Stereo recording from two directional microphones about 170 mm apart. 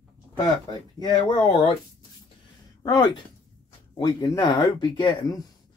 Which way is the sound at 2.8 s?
20° left (ahead or behind).